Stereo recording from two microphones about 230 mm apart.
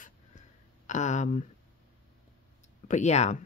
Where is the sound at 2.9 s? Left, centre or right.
Left.